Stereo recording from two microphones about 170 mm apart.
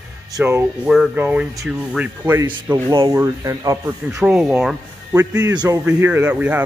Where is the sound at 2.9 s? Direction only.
20° right (ahead or behind).